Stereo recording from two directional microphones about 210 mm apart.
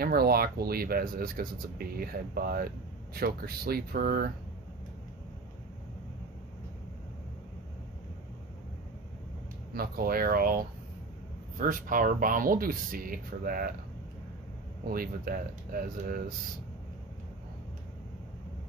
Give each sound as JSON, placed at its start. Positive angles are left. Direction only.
{"t": 0.0, "sound": "speech", "side_deg": -45}
{"t": 9.8, "sound": "speech", "side_deg": -45}
{"t": 14.9, "sound": "speech", "side_deg": -45}